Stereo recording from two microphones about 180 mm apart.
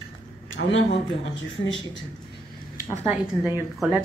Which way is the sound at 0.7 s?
30° left (ahead or behind).